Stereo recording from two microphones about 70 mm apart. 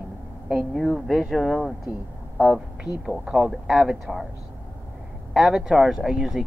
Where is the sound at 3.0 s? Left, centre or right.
Centre.